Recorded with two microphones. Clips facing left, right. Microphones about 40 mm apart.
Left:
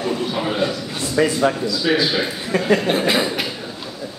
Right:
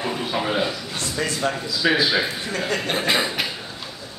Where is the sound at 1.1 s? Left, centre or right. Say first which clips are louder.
Left 8 dB; centre.